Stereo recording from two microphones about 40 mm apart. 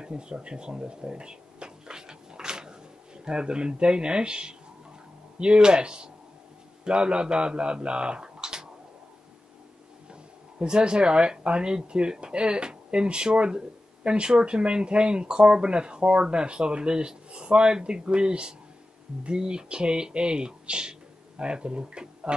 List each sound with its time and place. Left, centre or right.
0.0 s a sound: right
3.3 s speech: right
10.6 s speech: right